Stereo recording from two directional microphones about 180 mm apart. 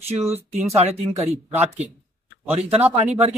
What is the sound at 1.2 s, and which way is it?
Speech, 40° right (ahead or behind).